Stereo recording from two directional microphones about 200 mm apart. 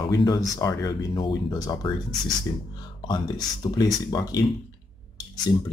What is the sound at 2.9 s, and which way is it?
Speech, 20° left (ahead or behind).